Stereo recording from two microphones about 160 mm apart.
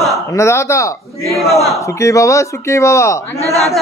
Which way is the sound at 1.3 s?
Centre (ahead or behind).